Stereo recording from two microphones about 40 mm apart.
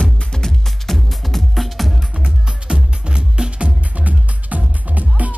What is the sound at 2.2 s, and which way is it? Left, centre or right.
Music, right.